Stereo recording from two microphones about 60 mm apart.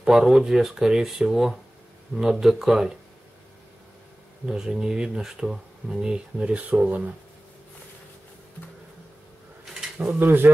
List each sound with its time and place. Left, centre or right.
0.0 s speech: centre
4.5 s speech: centre
9.9 s speech: right
10.2 s a man's voice: right